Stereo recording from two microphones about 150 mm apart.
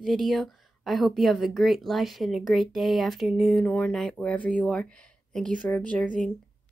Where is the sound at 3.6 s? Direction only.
10° left (ahead or behind).